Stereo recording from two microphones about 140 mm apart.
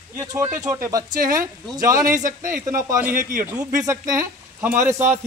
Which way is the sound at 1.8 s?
70° right (ahead or behind).